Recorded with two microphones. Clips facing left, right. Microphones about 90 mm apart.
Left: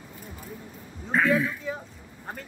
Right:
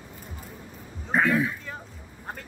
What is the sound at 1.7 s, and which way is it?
Speech, 5° left (ahead or behind).